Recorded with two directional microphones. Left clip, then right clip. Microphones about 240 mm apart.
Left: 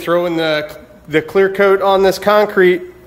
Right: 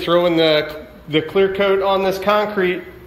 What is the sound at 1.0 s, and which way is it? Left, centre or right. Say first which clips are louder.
Speech: left 3 dB; centre.